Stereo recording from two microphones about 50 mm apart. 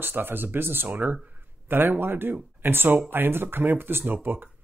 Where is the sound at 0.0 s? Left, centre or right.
Right.